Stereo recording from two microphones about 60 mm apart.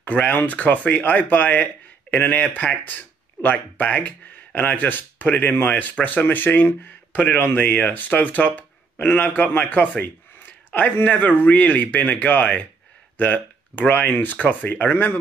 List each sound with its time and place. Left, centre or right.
0.3 s speech: left